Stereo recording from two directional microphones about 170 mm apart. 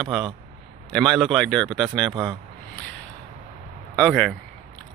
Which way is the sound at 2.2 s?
5° left (ahead or behind).